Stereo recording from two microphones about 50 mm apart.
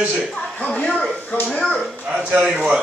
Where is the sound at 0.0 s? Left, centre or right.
Centre.